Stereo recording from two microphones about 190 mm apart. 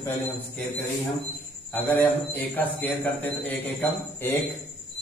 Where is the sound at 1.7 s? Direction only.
10° left (ahead or behind).